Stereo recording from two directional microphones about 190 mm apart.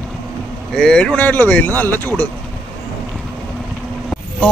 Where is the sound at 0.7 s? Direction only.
5° left (ahead or behind).